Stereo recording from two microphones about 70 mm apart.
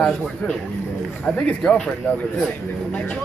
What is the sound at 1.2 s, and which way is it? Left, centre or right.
Speech, centre.